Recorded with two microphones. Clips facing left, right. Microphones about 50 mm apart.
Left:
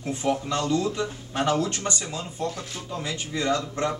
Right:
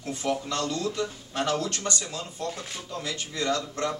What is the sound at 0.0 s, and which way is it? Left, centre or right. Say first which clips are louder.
Speech: left 3 dB; left.